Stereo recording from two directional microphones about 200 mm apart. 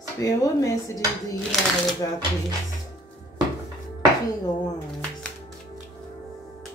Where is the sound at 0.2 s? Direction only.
15° left (ahead or behind).